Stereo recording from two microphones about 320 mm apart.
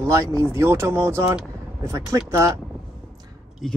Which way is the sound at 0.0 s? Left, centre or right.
Centre.